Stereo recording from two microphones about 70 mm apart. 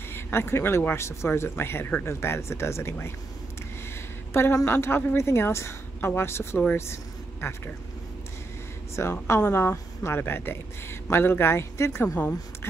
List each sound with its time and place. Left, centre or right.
0.1 s speech: left
4.3 s a woman's voice: left
6.9 s a sound: left
8.9 s speech: left